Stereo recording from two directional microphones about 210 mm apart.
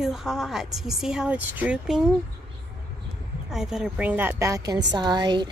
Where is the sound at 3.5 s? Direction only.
Centre (ahead or behind); by 5.5 s 20° right (ahead or behind).